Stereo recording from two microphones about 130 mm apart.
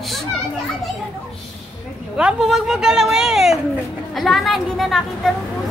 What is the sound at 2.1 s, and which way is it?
A woman's voice, 5° right (ahead or behind).